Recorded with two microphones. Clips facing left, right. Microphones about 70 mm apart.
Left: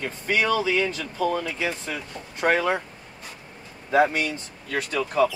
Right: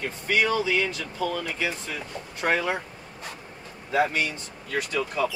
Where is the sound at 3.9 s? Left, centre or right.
Left.